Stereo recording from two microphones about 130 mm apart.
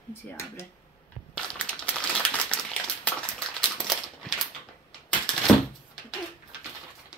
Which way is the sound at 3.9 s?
Centre (ahead or behind).